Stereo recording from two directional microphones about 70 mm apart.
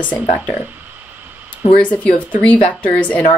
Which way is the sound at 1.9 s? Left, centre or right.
Centre.